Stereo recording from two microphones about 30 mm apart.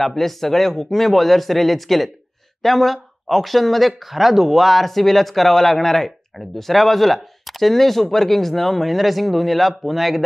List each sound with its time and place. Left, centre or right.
0.0 s a man's voice: centre